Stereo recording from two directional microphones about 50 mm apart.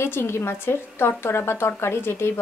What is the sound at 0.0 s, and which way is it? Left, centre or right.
A woman's voice, left.